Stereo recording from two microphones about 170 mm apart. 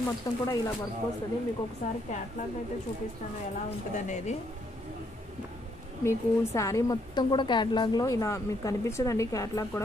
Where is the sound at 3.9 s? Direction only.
45° left (ahead or behind).